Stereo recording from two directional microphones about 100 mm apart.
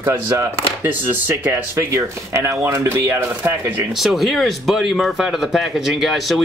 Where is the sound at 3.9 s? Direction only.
Centre (ahead or behind).